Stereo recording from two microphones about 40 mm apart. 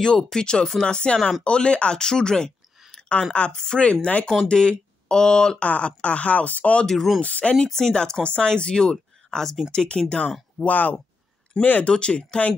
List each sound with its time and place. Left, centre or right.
0.0 s speech: centre
3.8 s speech: left
5.6 s speech: left
6.9 s speech: centre
7.2 s speech: left
7.6 s speech: centre
9.3 s speech: centre
9.7 s speech: left
10.6 s speech: left
11.8 s speech: left